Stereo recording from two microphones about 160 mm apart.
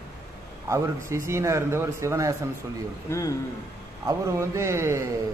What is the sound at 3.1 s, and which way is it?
Speech, 20° left (ahead or behind).